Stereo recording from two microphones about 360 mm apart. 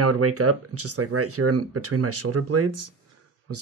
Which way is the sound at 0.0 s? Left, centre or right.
Right.